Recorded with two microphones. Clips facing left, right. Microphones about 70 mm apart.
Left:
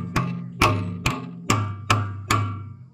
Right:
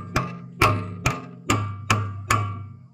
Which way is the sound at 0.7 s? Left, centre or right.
Right.